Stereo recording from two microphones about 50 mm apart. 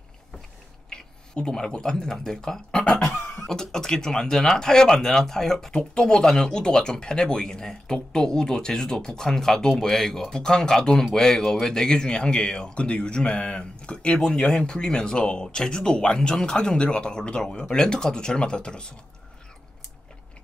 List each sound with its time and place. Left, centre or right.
0.8 s speech: centre